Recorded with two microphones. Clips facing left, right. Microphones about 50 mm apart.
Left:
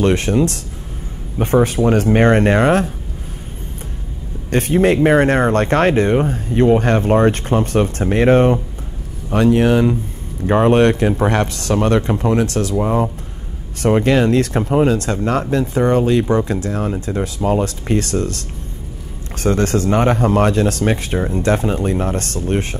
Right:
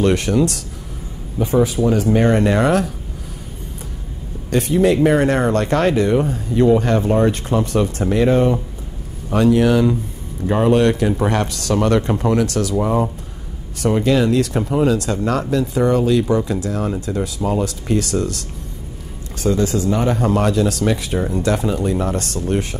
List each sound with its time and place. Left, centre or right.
0.0 s speech: left
1.4 s speech: left
4.5 s speech: left
12.7 s speech: left
13.8 s speech: left